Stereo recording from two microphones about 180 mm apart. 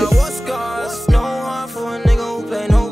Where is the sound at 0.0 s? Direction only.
Centre (ahead or behind).